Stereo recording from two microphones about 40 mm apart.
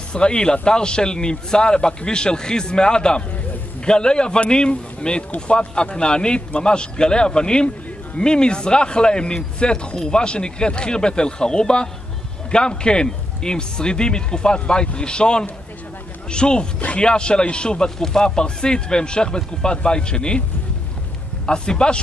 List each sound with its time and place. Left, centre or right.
0.1 s a man's voice: left
21.5 s a man's voice: left